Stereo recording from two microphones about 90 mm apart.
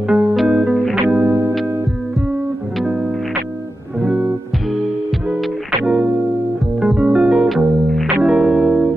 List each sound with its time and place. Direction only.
0.1 s music: 5° right (ahead or behind)
1.1 s music: 30° right (ahead or behind)
4.0 s music: 10° right (ahead or behind)
6.8 s music: 5° right (ahead or behind)